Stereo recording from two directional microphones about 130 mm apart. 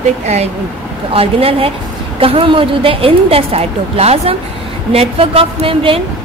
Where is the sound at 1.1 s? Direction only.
45° right (ahead or behind).